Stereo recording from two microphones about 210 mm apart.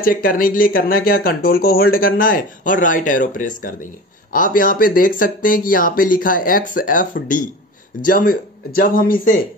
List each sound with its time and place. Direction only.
0.0 s speech: 40° left (ahead or behind)